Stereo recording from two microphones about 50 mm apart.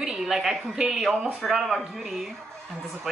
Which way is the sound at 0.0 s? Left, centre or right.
Centre.